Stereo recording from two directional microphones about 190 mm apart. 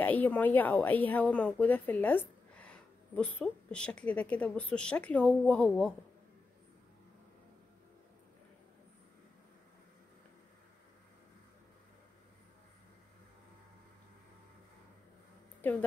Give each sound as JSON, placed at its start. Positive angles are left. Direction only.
{"t": 0.0, "sound": "a woman's voice", "side_deg": 10}
{"t": 15.6, "sound": "a woman's voice", "side_deg": 10}